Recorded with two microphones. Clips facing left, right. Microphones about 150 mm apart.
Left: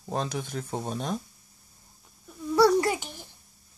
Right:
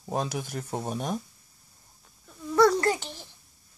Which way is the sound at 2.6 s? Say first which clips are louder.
Even; 10° left (ahead or behind).